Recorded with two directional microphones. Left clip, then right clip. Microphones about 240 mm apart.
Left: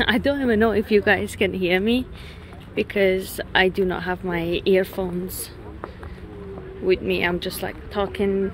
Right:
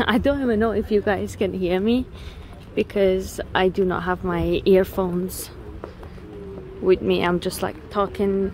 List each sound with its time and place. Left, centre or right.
0.0 s a woman's voice: centre
6.8 s a woman's voice: centre